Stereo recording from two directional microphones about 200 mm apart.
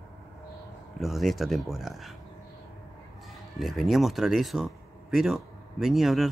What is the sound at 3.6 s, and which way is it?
Speech, centre (ahead or behind).